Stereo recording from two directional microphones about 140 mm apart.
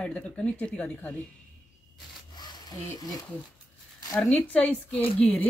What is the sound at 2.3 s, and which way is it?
Rub, 30° left (ahead or behind).